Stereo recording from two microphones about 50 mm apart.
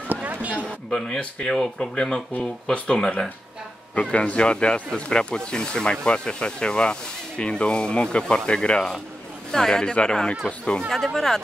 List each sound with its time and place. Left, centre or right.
0.1 s a sound: right
0.6 s speech: left
11.1 s speech: centre